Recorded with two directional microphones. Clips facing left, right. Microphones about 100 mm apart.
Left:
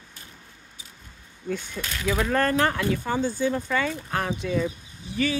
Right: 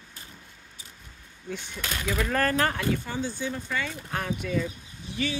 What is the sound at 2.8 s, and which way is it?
Speech, 55° left (ahead or behind).